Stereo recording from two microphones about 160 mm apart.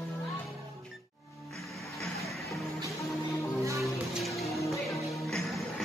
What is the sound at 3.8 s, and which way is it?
Music, centre (ahead or behind).